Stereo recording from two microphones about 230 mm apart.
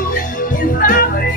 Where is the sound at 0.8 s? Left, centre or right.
Left.